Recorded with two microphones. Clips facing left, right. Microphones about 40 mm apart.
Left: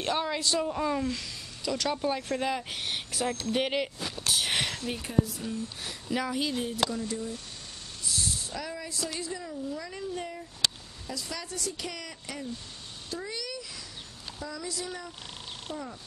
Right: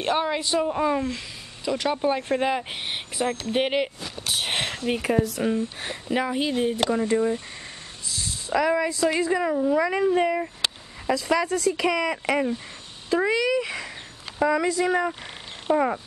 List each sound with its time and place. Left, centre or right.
0.0 s speech: right
4.3 s a sound: right
5.1 s speech: right
5.5 s speech: right
8.5 s speech: right
8.8 s speech: right
9.3 s speech: right
11.1 s speech: right
12.1 s speech: right
13.6 s a sound: right
14.4 s a woman's voice: right
15.7 s speech: right